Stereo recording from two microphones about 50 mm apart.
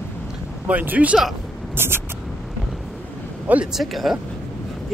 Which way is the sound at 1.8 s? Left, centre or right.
Right.